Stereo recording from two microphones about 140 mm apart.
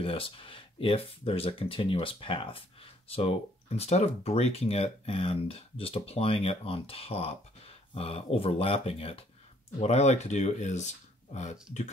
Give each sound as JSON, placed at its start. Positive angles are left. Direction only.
{"t": 0.0, "sound": "speech", "side_deg": 40}